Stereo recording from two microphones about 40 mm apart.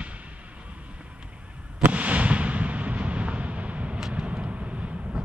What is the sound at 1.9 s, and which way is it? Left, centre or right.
Artillery fire, right.